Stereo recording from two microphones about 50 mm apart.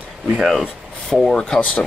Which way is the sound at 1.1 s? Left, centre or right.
Centre.